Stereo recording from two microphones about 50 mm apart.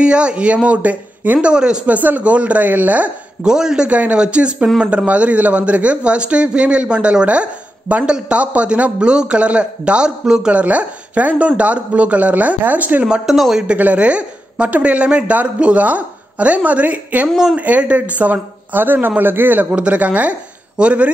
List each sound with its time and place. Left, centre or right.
0.0 s a woman's voice: right
1.5 s a man's voice: centre
1.9 s speech: right
3.4 s a man's voice: centre
3.9 s a woman's voice: right
10.5 s a woman's voice: right
13.3 s a man's voice: centre
13.7 s a woman's voice: right
19.7 s a woman's voice: right